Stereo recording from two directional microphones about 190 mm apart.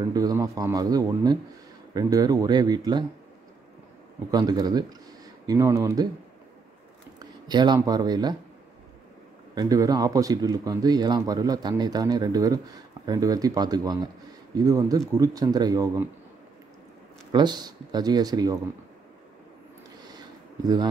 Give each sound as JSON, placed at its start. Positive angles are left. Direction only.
{"t": 0.1, "sound": "speech", "side_deg": -20}
{"t": 4.3, "sound": "speech", "side_deg": -20}
{"t": 7.2, "sound": "speech", "side_deg": -20}
{"t": 9.6, "sound": "speech", "side_deg": -20}
{"t": 17.3, "sound": "speech", "side_deg": -20}
{"t": 20.1, "sound": "a sound", "side_deg": -20}